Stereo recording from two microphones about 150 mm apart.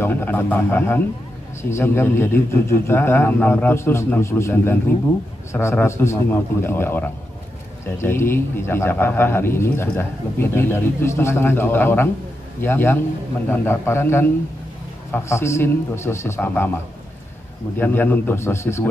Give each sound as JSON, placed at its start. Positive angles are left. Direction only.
{"t": 0.0, "sound": "speech", "side_deg": 15}
{"t": 17.7, "sound": "speech", "side_deg": 10}